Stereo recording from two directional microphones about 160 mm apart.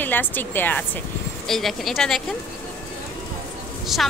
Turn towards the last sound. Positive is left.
turn(degrees=0)  # may be behind; listen again after turning